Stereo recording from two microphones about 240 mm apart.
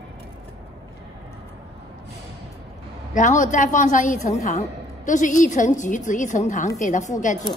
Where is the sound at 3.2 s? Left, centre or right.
Left.